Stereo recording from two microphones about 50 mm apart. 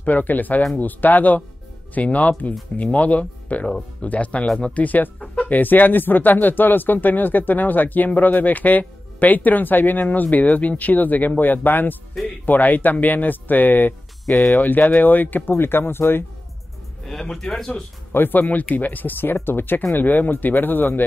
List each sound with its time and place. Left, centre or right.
0.0 s speech: left
5.2 s chicken: left
5.5 s speech: left
15.5 s speech: left
17.0 s speech: centre
18.1 s speech: left